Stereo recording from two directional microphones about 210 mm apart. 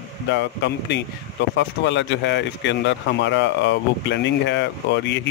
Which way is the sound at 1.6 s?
60° left (ahead or behind).